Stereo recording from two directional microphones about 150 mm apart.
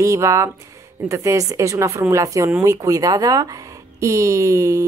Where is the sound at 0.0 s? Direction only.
20° right (ahead or behind).